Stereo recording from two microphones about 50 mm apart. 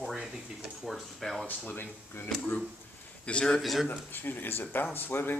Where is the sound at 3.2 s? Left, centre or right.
Centre.